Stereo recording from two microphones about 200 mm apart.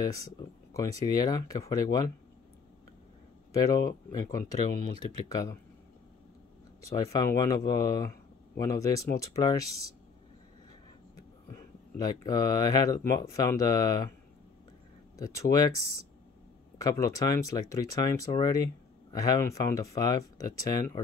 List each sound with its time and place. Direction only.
0.0 s speech: 15° left (ahead or behind)
3.5 s speech: 15° left (ahead or behind)
6.8 s speech: 15° left (ahead or behind)
11.5 s speech: 20° left (ahead or behind)
15.1 s speech: 15° left (ahead or behind)
17.0 s speech: 15° left (ahead or behind)